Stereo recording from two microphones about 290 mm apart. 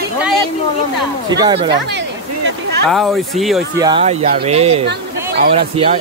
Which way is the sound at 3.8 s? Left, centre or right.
Centre.